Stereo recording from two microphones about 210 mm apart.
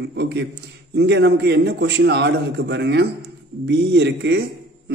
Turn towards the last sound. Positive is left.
turn(degrees=-55)  # may be behind; listen again after turning